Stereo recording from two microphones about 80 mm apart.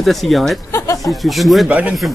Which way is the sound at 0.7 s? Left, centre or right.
Left.